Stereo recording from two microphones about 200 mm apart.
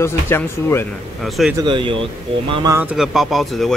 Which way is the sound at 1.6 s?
25° right (ahead or behind).